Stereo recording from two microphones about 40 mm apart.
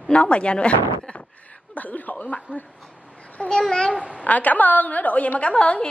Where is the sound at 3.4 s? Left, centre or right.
Left.